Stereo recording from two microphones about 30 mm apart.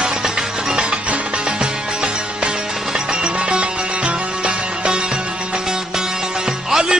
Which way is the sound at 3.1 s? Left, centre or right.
Right.